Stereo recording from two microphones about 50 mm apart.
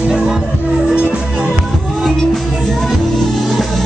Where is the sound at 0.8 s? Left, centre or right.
Right.